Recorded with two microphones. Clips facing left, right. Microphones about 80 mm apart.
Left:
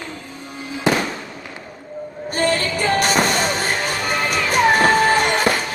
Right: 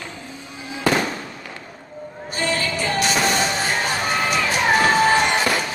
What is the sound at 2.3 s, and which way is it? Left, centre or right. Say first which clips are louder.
Music: left 4 dB; left.